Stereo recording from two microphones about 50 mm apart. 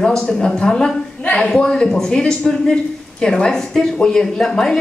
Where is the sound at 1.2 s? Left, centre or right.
Left.